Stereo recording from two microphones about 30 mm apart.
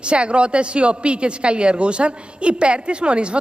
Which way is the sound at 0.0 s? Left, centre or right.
Right.